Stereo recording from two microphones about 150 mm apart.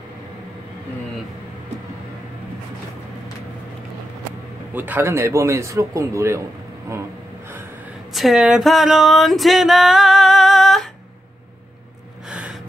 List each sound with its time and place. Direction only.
4.7 s a man's voice: 15° right (ahead or behind)
8.1 s a sound: centre (ahead or behind)
12.3 s gasp: 5° right (ahead or behind)